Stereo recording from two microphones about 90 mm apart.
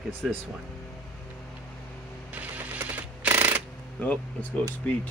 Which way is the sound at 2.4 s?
20° right (ahead or behind).